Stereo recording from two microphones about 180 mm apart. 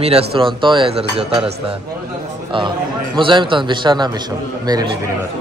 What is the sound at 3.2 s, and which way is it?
Speech, 25° right (ahead or behind).